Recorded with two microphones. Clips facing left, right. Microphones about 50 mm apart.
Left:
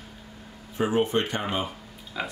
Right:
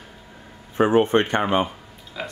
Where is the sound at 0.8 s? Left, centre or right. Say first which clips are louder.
Right 7 dB; right.